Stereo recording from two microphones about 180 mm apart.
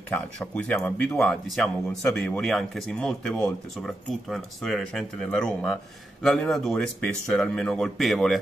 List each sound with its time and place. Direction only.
0.1 s speech: 5° left (ahead or behind)